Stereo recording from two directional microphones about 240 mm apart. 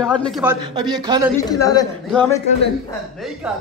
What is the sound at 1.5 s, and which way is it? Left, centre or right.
A man's voice, centre.